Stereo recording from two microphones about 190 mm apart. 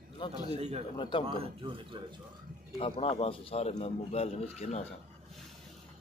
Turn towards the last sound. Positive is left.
turn(degrees=35)  # may be behind; listen again after turning